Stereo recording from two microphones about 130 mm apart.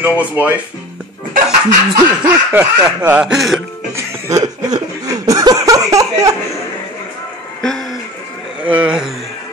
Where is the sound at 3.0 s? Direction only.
10° right (ahead or behind).